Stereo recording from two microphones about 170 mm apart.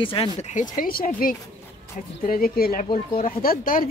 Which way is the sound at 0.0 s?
30° left (ahead or behind).